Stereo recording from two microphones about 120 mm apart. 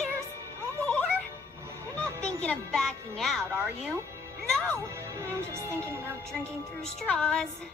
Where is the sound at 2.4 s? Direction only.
5° left (ahead or behind).